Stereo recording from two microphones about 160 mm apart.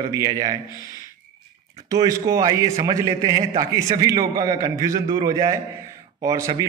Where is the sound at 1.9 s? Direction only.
20° right (ahead or behind).